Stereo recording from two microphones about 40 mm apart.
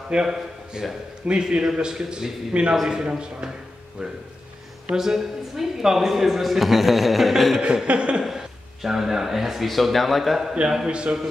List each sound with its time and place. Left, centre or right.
0.2 s a man's voice: centre
1.2 s a man's voice: right; by 7.6 s centre
7.8 s a man's voice: right
8.3 s speech: centre
10.9 s a man's voice: right